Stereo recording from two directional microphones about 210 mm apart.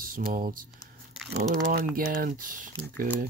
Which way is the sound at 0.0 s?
40° right (ahead or behind).